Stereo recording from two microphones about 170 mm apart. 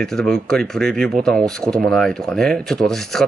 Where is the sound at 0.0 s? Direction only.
5° left (ahead or behind).